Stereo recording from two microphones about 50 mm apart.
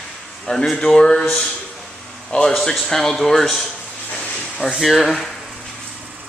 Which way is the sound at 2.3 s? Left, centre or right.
Left.